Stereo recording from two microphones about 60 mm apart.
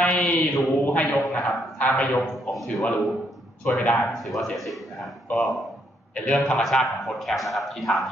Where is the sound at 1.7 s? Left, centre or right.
Left.